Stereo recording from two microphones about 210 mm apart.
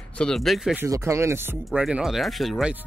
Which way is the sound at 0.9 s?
15° right (ahead or behind).